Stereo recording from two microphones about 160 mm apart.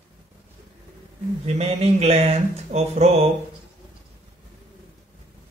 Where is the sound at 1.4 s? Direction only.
40° right (ahead or behind).